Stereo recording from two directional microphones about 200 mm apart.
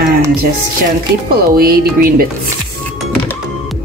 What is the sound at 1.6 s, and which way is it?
Speech, 45° right (ahead or behind).